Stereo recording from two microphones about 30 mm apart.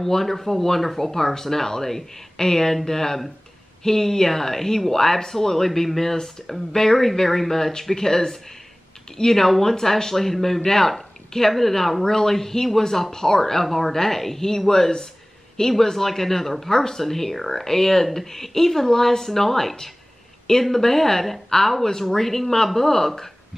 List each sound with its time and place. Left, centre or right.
0.0 s a woman's voice: centre
14.7 s speech: left